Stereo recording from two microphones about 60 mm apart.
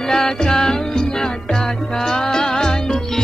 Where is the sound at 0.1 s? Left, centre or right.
Centre.